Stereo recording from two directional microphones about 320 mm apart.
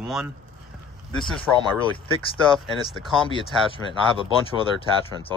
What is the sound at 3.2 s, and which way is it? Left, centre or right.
Speech, centre.